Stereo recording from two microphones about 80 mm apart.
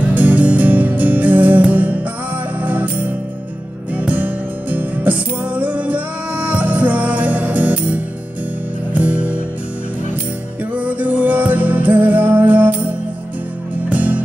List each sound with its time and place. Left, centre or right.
0.0 s music: centre
10.7 s music: centre